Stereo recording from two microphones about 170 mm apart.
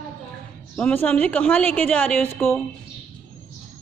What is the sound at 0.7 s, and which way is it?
A woman's voice, 10° left (ahead or behind).